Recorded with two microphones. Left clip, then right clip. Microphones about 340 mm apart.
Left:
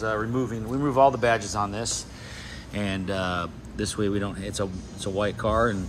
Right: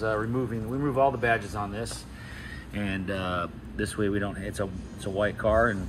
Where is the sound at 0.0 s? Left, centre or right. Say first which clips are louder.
Left 1 dB; centre.